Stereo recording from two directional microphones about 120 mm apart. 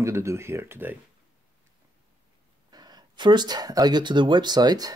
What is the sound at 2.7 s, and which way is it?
Speech, 35° right (ahead or behind).